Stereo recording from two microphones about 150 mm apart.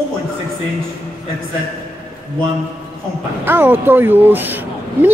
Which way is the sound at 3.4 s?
15° right (ahead or behind).